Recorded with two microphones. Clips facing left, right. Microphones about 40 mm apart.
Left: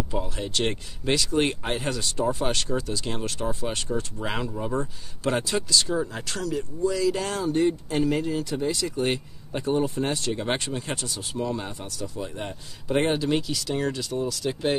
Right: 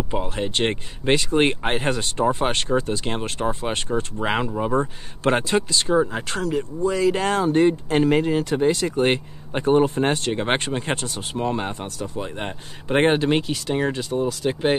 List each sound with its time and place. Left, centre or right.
0.1 s speech: right